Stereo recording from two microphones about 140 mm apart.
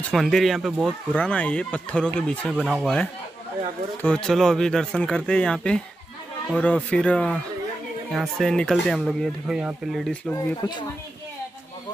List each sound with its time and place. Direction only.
0.0 s speech: centre (ahead or behind)
1.1 s speech: 10° left (ahead or behind)
2.5 s speech: 5° right (ahead or behind)
10.3 s speech: 30° left (ahead or behind)